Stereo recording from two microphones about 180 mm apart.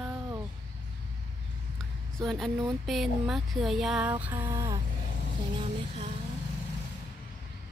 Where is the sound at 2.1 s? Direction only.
Centre (ahead or behind); by 4.8 s 20° right (ahead or behind).